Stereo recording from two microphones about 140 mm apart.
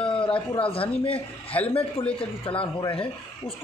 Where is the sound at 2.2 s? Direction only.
40° left (ahead or behind).